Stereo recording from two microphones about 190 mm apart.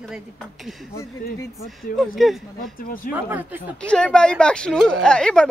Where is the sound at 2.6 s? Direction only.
45° left (ahead or behind).